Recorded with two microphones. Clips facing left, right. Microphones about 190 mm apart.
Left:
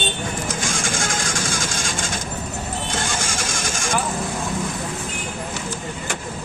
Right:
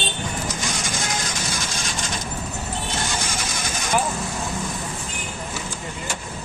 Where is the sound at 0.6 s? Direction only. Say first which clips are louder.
Left 3 dB; 50° left (ahead or behind).